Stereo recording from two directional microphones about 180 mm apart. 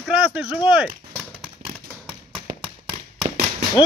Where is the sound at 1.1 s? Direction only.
5° left (ahead or behind).